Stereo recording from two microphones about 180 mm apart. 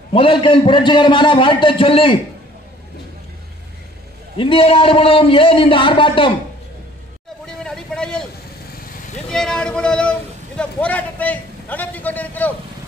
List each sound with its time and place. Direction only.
0.1 s a man's voice: 30° left (ahead or behind)
4.4 s a man's voice: 30° left (ahead or behind)
7.4 s a sound: 5° left (ahead or behind)
9.3 s a man's voice: 5° left (ahead or behind)